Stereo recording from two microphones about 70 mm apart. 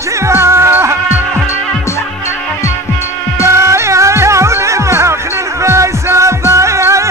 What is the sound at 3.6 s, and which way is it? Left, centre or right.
Music, right.